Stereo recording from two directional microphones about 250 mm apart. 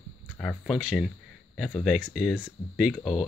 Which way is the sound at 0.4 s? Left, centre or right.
Centre.